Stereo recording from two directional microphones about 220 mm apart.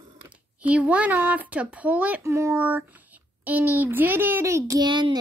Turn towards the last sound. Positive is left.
turn(degrees=-20)  # may be behind; listen again after turning